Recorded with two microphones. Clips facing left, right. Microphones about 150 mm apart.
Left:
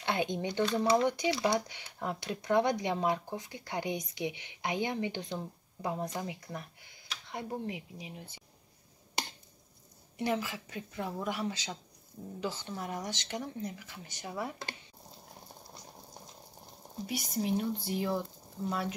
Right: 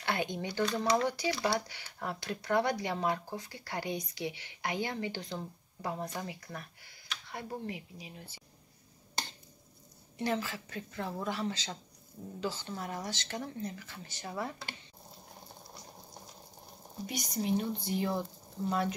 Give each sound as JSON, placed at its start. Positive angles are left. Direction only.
{"t": 0.0, "sound": "speech", "side_deg": 20}
{"t": 10.1, "sound": "speech", "side_deg": 15}
{"t": 17.0, "sound": "speech", "side_deg": 5}